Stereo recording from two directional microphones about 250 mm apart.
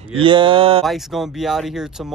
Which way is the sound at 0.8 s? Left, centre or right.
Centre.